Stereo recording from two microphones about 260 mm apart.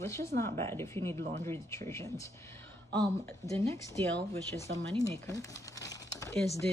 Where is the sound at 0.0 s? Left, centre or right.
Centre.